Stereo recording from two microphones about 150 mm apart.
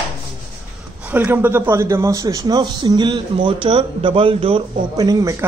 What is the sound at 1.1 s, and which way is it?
Speech, 15° right (ahead or behind).